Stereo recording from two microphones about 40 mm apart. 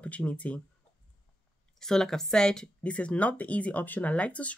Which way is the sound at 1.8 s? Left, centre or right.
Centre.